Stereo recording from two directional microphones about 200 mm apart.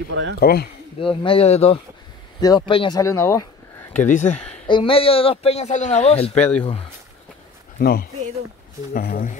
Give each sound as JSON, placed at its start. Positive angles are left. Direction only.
{"t": 0.1, "sound": "speech", "side_deg": -70}
{"t": 0.4, "sound": "speech", "side_deg": 50}
{"t": 1.0, "sound": "speech", "side_deg": 25}
{"t": 4.0, "sound": "speech", "side_deg": 40}
{"t": 4.6, "sound": "speech", "side_deg": 25}
{"t": 7.8, "sound": "speech", "side_deg": 50}